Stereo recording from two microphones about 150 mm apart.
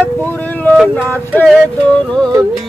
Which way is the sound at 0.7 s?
5° right (ahead or behind).